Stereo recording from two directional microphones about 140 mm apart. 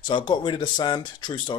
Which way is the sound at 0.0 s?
35° left (ahead or behind).